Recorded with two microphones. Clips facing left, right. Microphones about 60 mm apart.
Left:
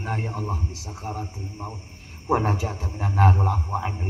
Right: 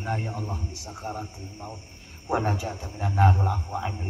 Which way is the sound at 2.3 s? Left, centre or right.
Left.